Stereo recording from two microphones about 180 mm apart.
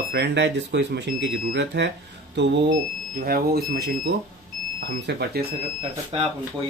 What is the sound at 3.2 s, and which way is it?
Speech, 55° right (ahead or behind).